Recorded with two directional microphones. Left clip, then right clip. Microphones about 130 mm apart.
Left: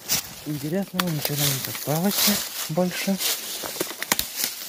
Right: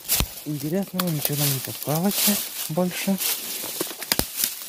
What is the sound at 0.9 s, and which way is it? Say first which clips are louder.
Speech: left 2 dB; 35° right (ahead or behind).